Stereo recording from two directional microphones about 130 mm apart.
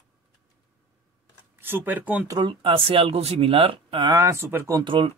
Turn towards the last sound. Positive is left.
turn(degrees=-40)  # may be behind; listen again after turning